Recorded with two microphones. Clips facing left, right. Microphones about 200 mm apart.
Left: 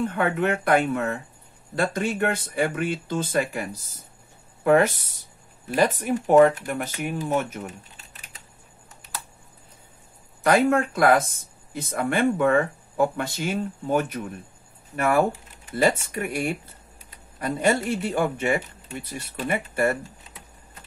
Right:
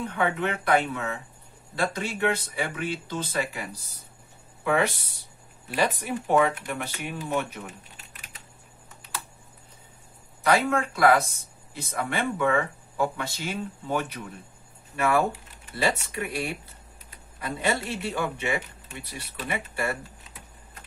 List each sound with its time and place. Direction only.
0.0 s speech: 50° left (ahead or behind)
10.4 s speech: 50° left (ahead or behind)